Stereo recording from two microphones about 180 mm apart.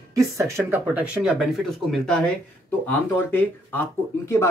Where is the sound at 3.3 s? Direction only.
10° left (ahead or behind).